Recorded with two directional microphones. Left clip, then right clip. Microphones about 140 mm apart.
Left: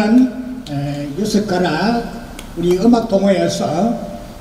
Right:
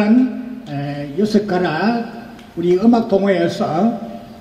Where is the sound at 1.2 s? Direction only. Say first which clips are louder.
Even; 30° left (ahead or behind).